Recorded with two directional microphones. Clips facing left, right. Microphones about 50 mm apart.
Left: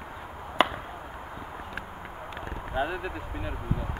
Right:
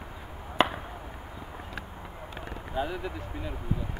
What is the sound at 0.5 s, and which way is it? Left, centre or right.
Chop, centre.